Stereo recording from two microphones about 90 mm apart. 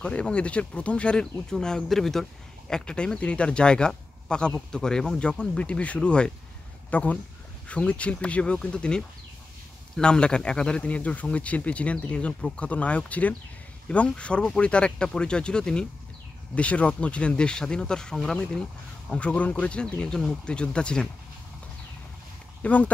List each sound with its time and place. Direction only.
0.0 s speech: 10° left (ahead or behind)
22.6 s speech: 15° left (ahead or behind)